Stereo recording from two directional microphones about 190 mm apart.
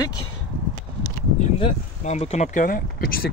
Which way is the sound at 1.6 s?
35° left (ahead or behind).